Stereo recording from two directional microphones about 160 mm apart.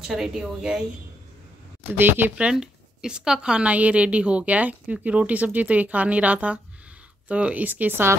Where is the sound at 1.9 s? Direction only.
15° right (ahead or behind).